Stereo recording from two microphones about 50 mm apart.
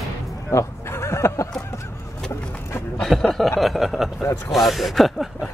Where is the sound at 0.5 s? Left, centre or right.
Left.